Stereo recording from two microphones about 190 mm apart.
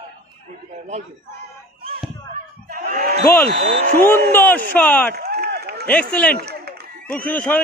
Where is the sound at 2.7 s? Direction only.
50° right (ahead or behind).